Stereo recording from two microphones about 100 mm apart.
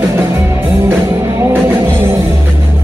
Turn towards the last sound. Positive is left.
turn(degrees=-25)  # may be behind; listen again after turning